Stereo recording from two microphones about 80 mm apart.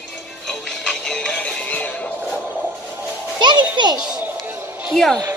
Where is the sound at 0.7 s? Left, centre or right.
Centre.